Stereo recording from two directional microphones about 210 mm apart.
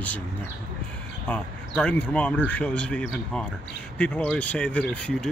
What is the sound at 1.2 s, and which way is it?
Speech, 5° left (ahead or behind).